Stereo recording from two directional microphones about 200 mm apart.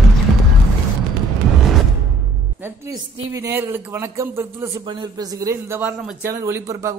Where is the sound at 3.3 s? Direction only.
15° right (ahead or behind).